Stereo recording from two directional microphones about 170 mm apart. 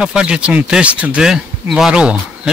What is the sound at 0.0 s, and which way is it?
Speech, 5° right (ahead or behind).